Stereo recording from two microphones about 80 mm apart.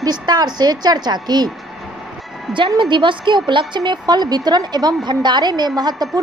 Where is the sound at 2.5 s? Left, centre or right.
Right.